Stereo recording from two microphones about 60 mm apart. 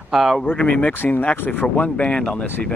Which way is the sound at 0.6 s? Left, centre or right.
Centre.